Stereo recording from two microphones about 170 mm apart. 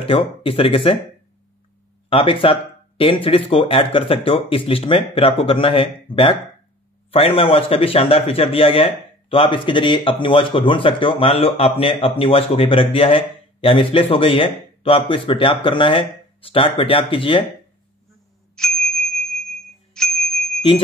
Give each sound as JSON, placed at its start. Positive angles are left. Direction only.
{"t": 0.0, "sound": "speech", "side_deg": 30}
{"t": 2.0, "sound": "speech", "side_deg": 30}
{"t": 18.6, "sound": "bicycle bell", "side_deg": 5}